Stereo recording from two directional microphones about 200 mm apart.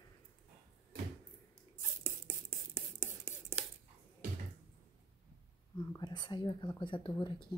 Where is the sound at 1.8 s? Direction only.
15° right (ahead or behind).